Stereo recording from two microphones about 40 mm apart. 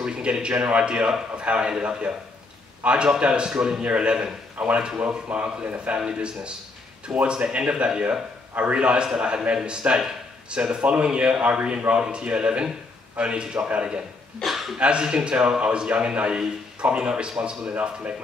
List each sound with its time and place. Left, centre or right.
0.0 s a man's voice: right
5.0 s speech: right
6.1 s a man's voice: right
7.1 s a man's voice: centre
7.7 s a man's voice: right
14.4 s a man's voice: centre
14.8 s a man's voice: right